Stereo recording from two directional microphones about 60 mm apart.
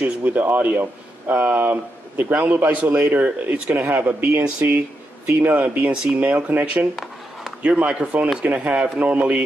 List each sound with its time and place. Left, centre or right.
0.0 s a man's voice: right
1.6 s a man's voice: right